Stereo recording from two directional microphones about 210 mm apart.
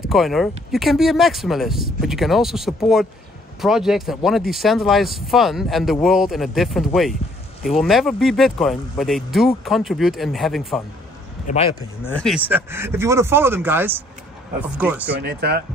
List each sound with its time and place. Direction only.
0.1 s speech: centre (ahead or behind)
11.4 s speech: 30° left (ahead or behind)
12.0 s speech: 5° left (ahead or behind)
12.4 s speech: 10° right (ahead or behind)
15.1 s speech: 50° right (ahead or behind)